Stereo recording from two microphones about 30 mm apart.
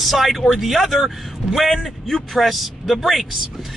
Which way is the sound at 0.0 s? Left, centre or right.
Centre.